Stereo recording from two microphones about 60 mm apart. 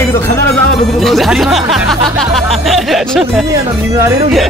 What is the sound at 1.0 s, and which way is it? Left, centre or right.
Speech, centre.